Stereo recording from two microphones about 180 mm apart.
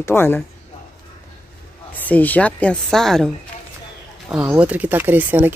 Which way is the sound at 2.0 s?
10° left (ahead or behind).